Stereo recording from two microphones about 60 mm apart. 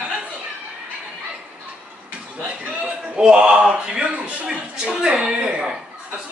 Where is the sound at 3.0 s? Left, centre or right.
Centre.